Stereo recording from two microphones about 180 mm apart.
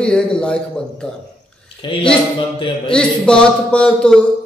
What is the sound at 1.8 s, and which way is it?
Speech, 30° left (ahead or behind).